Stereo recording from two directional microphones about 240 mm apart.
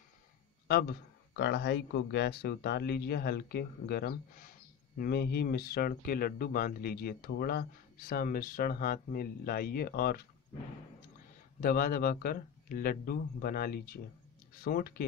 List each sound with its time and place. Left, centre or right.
0.7 s speech: left
11.6 s speech: left